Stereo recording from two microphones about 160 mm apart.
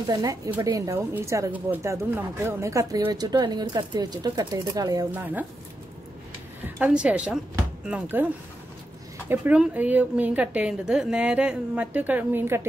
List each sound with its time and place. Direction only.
0.0 s speech: 25° right (ahead or behind)
5.1 s a woman's voice: 10° right (ahead or behind)
6.6 s a woman's voice: 5° right (ahead or behind)
9.3 s a woman's voice: 10° right (ahead or behind)